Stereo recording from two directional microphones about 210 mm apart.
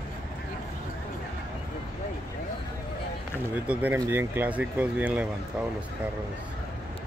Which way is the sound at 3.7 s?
10° right (ahead or behind).